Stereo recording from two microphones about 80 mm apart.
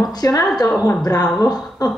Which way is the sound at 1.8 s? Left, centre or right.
Left.